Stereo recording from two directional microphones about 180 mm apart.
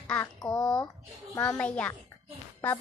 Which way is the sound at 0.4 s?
20° left (ahead or behind).